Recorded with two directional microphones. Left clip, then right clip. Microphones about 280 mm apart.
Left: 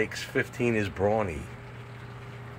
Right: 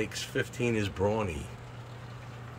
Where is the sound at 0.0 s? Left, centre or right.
Centre.